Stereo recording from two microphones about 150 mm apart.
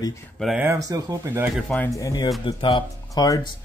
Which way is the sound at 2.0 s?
25° left (ahead or behind).